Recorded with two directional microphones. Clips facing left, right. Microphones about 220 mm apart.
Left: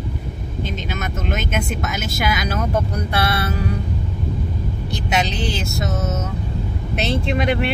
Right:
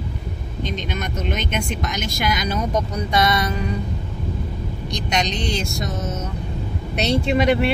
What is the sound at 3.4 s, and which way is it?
Music, 55° left (ahead or behind).